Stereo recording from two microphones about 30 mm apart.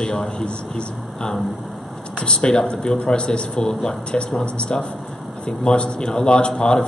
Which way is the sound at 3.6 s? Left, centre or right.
Centre.